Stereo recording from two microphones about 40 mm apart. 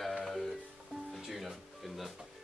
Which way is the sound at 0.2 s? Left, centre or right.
Centre.